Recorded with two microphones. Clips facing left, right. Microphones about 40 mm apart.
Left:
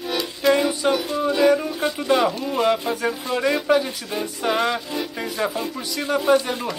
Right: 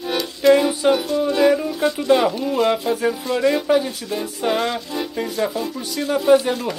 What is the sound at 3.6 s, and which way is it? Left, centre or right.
Speech, centre.